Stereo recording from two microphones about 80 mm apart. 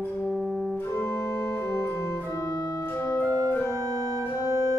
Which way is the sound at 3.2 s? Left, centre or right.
Right.